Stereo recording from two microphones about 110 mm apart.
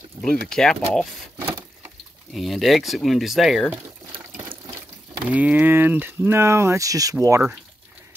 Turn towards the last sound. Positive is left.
turn(degrees=-30)  # may be behind; listen again after turning